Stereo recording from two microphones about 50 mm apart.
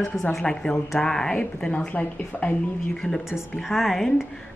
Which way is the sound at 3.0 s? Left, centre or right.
Centre.